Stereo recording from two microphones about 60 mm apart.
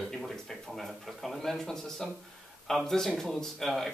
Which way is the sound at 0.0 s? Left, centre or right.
Centre.